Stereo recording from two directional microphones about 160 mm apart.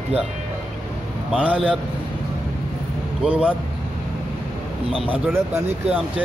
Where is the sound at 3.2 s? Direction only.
5° right (ahead or behind).